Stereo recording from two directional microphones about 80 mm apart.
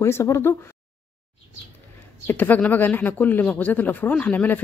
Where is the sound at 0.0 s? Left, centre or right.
Left.